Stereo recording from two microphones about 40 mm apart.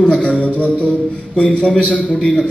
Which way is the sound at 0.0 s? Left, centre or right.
Left.